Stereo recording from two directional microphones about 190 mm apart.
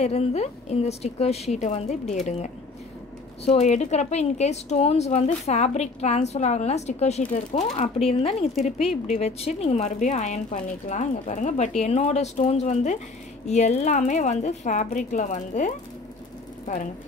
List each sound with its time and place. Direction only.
0.0 s speech: 35° left (ahead or behind)
3.4 s speech: 35° left (ahead or behind)